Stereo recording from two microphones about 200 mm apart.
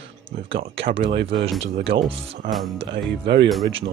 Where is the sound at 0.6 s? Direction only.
55° right (ahead or behind).